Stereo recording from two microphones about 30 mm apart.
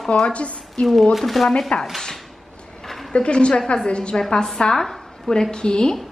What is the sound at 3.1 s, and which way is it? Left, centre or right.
A woman's voice, left.